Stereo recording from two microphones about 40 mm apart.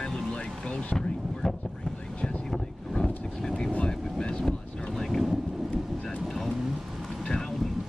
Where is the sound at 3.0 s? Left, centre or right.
Centre.